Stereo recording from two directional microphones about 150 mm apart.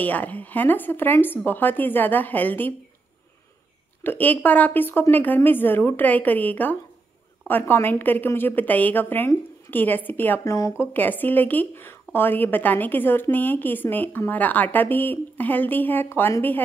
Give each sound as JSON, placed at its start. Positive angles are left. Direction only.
{"t": 0.0, "sound": "a woman's voice", "side_deg": 10}
{"t": 4.0, "sound": "a woman's voice", "side_deg": 10}